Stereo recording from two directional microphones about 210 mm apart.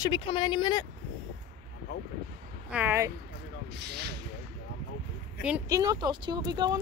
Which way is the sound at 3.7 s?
50° right (ahead or behind).